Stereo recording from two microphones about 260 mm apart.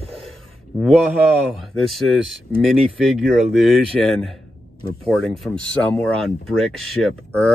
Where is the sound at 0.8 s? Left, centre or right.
Centre.